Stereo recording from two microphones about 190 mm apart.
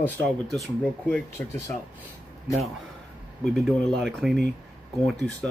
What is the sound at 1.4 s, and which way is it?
Speech, 15° left (ahead or behind).